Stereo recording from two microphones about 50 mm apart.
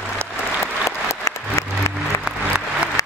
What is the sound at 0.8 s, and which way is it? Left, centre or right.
Applause, left.